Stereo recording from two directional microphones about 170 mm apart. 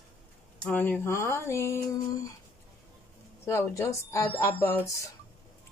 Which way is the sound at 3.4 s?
15° left (ahead or behind).